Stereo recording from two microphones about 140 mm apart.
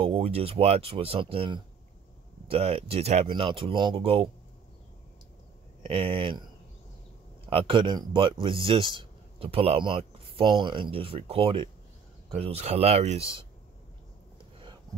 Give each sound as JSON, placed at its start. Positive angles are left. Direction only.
{"t": 0.0, "sound": "speech", "side_deg": -40}
{"t": 3.3, "sound": "a man's voice", "side_deg": -40}
{"t": 5.8, "sound": "a man's voice", "side_deg": -40}
{"t": 7.4, "sound": "a man's voice", "side_deg": -40}